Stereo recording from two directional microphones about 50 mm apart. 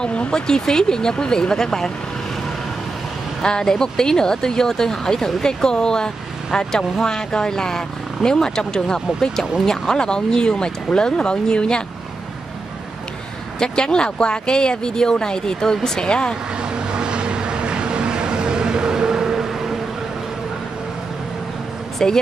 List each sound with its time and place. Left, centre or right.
0.0 s speech: centre
3.4 s speech: centre
13.6 s speech: centre
16.7 s vehicle: centre
21.9 s speech: centre